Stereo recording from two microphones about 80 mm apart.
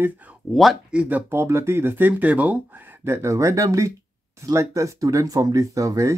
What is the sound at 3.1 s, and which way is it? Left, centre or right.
Speech, right.